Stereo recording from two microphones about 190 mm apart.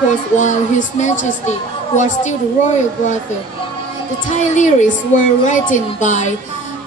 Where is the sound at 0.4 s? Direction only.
40° left (ahead or behind).